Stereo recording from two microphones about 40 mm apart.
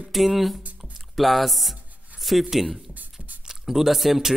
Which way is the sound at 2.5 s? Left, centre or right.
Centre.